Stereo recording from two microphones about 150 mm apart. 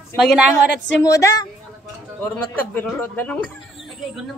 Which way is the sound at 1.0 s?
20° left (ahead or behind).